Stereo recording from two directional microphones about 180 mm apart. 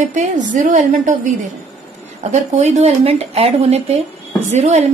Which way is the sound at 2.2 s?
40° right (ahead or behind).